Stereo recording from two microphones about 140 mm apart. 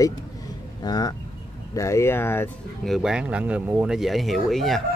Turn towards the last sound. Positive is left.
turn(degrees=0)  # may be behind; listen again after turning